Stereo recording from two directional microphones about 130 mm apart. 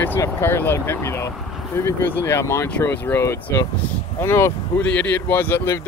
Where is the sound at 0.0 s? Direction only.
15° left (ahead or behind).